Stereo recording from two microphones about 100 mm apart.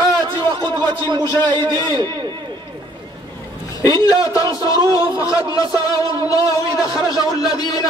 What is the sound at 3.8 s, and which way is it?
Speech, 35° left (ahead or behind).